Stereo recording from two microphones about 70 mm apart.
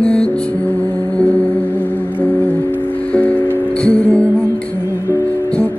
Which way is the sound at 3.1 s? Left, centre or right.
Centre.